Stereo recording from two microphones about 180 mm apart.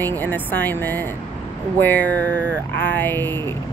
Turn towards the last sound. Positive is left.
turn(degrees=10)  # may be behind; listen again after turning